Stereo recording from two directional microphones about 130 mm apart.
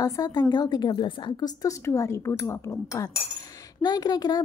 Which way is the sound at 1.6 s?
20° left (ahead or behind).